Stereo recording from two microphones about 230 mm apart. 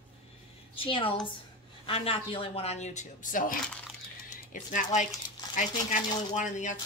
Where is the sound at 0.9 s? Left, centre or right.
Left.